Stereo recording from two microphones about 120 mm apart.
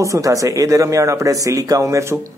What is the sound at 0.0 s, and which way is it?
Speech, 25° right (ahead or behind).